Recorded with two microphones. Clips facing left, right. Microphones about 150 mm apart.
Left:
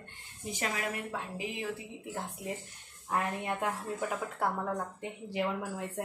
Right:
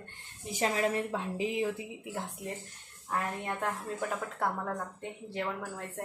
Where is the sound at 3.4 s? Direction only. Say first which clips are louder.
Left 1 dB; 10° left (ahead or behind).